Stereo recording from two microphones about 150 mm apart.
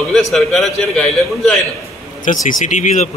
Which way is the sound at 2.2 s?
60° left (ahead or behind).